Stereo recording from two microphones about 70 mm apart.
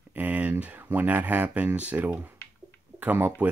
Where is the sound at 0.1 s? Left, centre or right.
Right.